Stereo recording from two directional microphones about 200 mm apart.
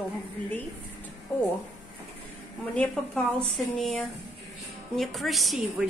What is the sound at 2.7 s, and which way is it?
A woman's voice, 5° left (ahead or behind).